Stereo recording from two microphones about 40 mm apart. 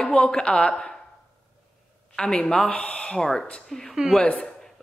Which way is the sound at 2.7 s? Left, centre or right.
Left.